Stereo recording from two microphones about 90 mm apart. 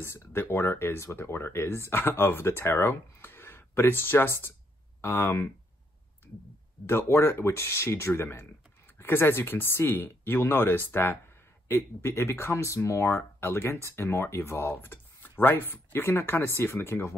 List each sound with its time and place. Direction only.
0.0 s speech: 25° left (ahead or behind)
6.9 s speech: 25° left (ahead or behind)